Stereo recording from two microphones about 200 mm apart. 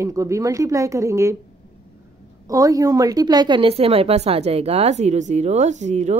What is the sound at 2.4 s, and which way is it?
A woman's voice, 15° right (ahead or behind).